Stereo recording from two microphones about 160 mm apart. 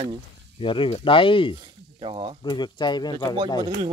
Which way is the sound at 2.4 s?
30° left (ahead or behind).